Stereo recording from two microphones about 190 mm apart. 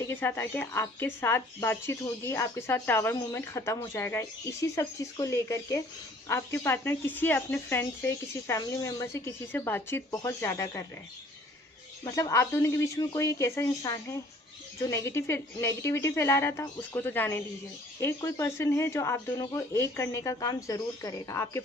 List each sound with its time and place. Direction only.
0.0 s speech: 10° left (ahead or behind)
12.0 s speech: 20° left (ahead or behind)